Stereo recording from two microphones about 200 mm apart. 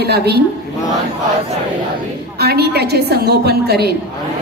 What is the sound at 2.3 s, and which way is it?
A woman's voice, 50° right (ahead or behind).